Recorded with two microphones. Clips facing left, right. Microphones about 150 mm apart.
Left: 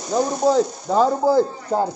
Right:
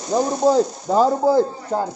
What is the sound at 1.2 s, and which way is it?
Speech, 20° right (ahead or behind).